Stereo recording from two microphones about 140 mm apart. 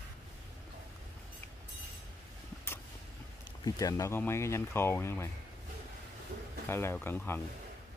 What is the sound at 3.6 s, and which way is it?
Speech, 25° left (ahead or behind).